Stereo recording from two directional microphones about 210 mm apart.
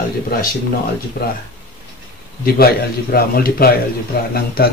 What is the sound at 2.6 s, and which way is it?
Speech, 45° left (ahead or behind).